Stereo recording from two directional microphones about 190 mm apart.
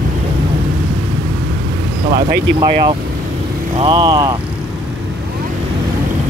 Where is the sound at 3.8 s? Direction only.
25° right (ahead or behind).